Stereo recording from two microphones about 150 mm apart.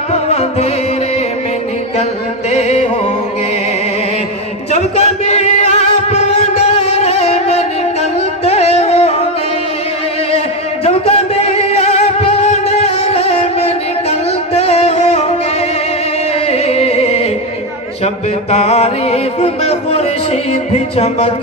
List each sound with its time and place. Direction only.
0.1 s music: 45° left (ahead or behind)
2.5 s music: 45° left (ahead or behind)
4.7 s music: 50° left (ahead or behind)
10.3 s music: 45° left (ahead or behind)
16.4 s music: 45° left (ahead or behind)